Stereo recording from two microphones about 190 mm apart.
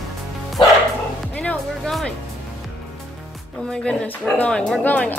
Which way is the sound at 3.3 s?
5° left (ahead or behind).